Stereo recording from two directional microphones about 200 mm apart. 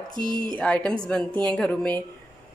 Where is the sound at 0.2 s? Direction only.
20° right (ahead or behind).